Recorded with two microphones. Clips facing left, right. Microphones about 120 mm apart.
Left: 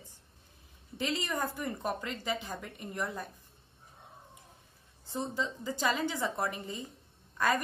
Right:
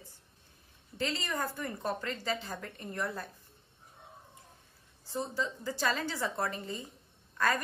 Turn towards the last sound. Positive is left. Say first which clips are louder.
# left 1 dB
turn(degrees=20)  # may be behind; listen again after turning